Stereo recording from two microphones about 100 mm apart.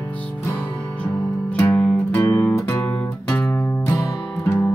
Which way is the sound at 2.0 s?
25° left (ahead or behind).